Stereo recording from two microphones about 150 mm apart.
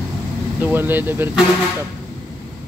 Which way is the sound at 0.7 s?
15° right (ahead or behind).